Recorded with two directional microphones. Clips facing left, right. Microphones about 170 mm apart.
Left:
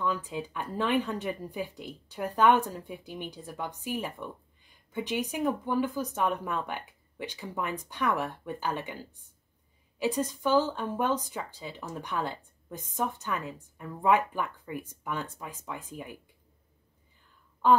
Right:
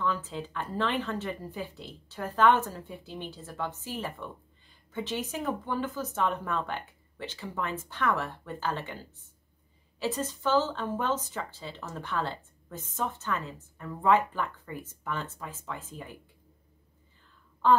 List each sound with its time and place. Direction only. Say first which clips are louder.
0.0 s speech: even; 15° left (ahead or behind)